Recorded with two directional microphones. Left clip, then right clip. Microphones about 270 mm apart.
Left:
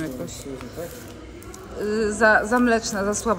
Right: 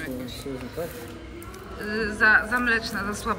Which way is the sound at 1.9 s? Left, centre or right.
Centre.